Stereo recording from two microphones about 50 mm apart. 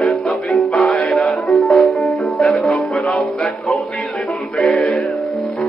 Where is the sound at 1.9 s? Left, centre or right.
Centre.